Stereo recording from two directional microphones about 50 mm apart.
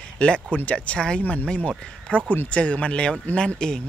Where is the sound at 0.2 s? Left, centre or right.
Left.